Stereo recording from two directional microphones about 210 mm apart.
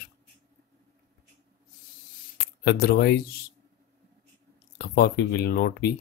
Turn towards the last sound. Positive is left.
turn(degrees=45)  # may be behind; listen again after turning